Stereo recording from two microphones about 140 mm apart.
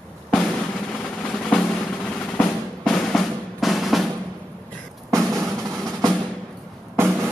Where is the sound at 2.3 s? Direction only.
5° left (ahead or behind).